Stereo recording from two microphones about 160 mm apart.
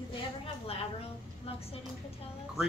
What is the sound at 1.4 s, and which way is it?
Speech, 40° left (ahead or behind).